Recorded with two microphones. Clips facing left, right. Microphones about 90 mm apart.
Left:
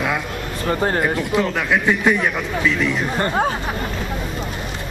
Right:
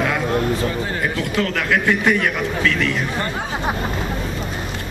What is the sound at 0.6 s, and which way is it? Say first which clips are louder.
Speech: left 4 dB; 45° left (ahead or behind).